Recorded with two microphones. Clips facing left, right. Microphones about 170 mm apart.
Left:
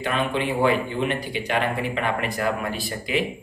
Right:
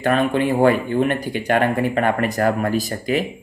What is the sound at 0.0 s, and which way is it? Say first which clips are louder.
Speech: right 6 dB; 45° right (ahead or behind).